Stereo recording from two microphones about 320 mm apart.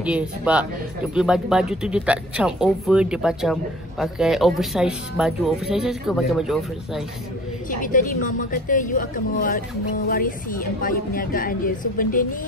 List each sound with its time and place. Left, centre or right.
0.0 s speech: centre
7.7 s a woman's voice: left